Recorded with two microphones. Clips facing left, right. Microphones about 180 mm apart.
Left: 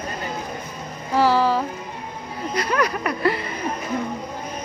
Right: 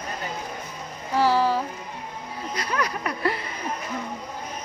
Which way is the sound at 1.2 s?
90° left.